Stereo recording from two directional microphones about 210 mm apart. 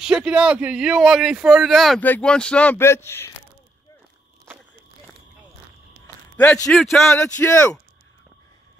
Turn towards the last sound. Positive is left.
turn(degrees=10)  # may be behind; listen again after turning